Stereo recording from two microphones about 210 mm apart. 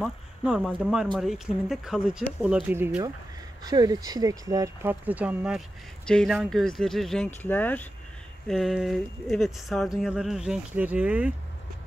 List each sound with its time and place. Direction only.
0.0 s speech: 5° right (ahead or behind)